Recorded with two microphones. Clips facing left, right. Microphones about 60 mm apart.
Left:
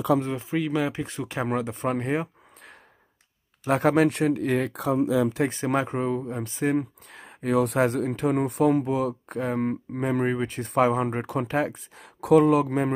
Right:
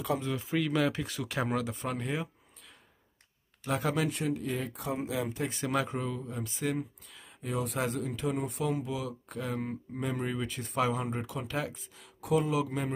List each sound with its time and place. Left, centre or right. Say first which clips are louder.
0.5 s speech: left 1 dB; centre
1.0 s speech: left 4 dB; left
1.7 s speech: left 8 dB; left
5.4 s speech: left 7 dB; left
6.8 s speech: left 7 dB; left
12.0 s speech: left 11 dB; left